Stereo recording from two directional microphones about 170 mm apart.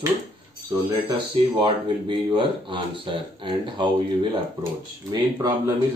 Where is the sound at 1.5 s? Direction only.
25° right (ahead or behind).